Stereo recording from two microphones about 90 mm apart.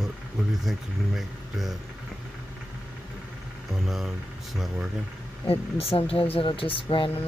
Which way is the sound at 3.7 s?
5° right (ahead or behind).